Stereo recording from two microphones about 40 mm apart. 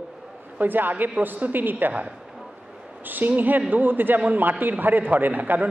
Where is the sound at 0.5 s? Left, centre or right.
Right.